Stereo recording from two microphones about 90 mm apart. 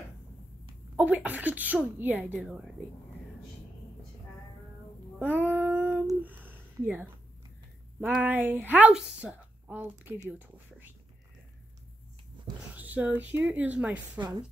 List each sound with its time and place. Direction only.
0.9 s speech: 15° right (ahead or behind)
2.4 s speech: 5° right (ahead or behind)
5.2 s speech: 20° right (ahead or behind)
5.6 s child singing: 20° right (ahead or behind)
6.2 s a sound: 20° right (ahead or behind)
8.1 s speech: 20° right (ahead or behind)
12.7 s speech: 20° right (ahead or behind)